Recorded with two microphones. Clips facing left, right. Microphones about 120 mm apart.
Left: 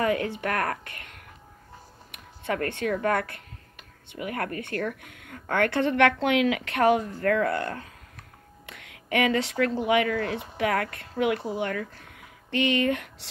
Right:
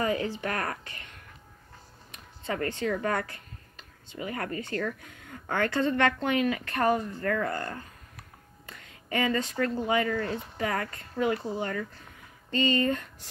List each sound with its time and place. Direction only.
0.0 s speech: 65° left (ahead or behind)
8.6 s a sound: 75° left (ahead or behind)
9.8 s a woman's voice: 75° left (ahead or behind)